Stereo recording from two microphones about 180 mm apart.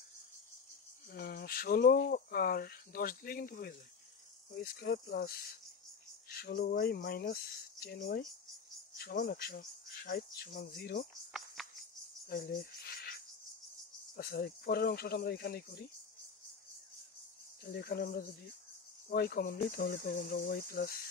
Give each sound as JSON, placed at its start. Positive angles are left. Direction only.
{"t": 1.1, "sound": "speech", "side_deg": 60}
{"t": 11.6, "sound": "cricket", "side_deg": 0}
{"t": 12.3, "sound": "speech", "side_deg": 55}
{"t": 17.6, "sound": "speech", "side_deg": 60}